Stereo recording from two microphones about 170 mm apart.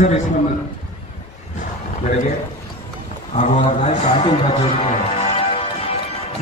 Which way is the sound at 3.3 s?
45° left (ahead or behind).